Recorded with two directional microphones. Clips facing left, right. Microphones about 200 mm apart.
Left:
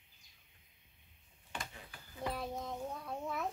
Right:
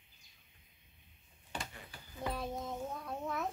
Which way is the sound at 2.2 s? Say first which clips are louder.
Right 1 dB; centre (ahead or behind).